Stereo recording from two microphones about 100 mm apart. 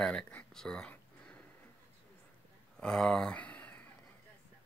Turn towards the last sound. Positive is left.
turn(degrees=15)  # may be behind; listen again after turning